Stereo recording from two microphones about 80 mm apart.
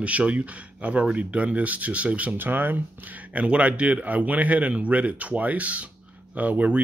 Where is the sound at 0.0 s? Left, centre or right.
Centre.